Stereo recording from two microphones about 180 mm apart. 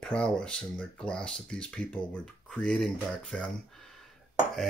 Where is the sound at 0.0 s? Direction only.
5° left (ahead or behind).